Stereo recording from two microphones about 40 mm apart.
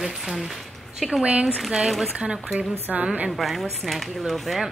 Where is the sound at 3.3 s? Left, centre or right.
Centre.